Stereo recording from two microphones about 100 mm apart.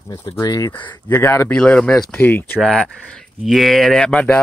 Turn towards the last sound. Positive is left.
turn(degrees=10)  # may be behind; listen again after turning